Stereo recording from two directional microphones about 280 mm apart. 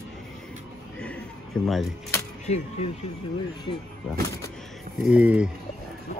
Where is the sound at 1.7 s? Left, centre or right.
Centre.